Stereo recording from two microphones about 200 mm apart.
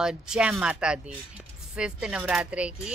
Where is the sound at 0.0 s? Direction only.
5° right (ahead or behind).